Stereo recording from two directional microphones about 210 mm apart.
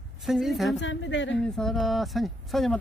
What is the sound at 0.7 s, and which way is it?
Speech, 60° left (ahead or behind).